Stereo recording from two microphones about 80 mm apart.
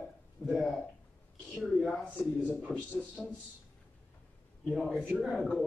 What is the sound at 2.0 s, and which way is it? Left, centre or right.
Speech, left.